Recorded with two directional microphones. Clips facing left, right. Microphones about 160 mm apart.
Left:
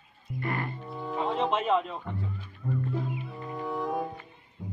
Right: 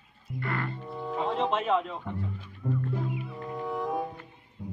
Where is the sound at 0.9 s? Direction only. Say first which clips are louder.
Even; centre (ahead or behind).